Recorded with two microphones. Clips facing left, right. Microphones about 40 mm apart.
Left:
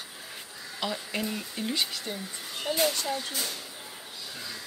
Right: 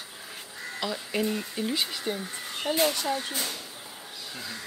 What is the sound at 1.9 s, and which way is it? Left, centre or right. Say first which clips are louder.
Speech: right 4 dB; right.